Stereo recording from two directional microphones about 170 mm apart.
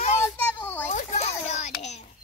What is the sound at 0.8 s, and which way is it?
Children playing, 40° left (ahead or behind).